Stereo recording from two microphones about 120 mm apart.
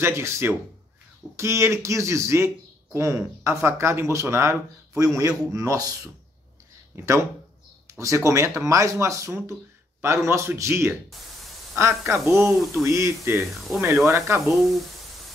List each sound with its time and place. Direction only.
0.0 s speech: 20° right (ahead or behind)
8.0 s speech: 25° right (ahead or behind)
14.5 s speech: centre (ahead or behind)